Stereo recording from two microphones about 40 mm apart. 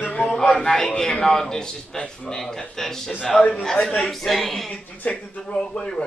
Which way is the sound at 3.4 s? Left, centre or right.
Left.